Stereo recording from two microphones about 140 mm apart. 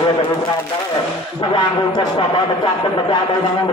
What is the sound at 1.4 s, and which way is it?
Speech, 35° left (ahead or behind).